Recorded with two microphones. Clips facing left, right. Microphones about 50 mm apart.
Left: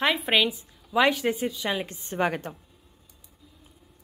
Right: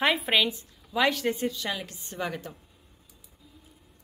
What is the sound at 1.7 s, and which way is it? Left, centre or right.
Speech, left.